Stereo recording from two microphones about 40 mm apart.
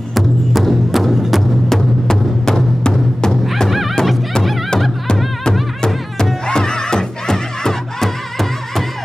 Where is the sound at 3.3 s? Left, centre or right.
Centre.